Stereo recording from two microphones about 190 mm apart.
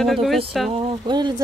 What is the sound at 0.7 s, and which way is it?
Speech, 25° right (ahead or behind).